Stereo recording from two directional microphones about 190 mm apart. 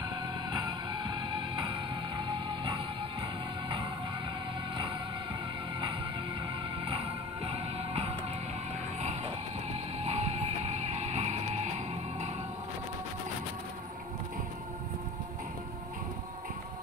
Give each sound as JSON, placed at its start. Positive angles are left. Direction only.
{"t": 0.5, "sound": "music", "side_deg": -25}
{"t": 2.1, "sound": "music", "side_deg": -25}
{"t": 7.4, "sound": "music", "side_deg": -30}
{"t": 10.0, "sound": "music", "side_deg": -35}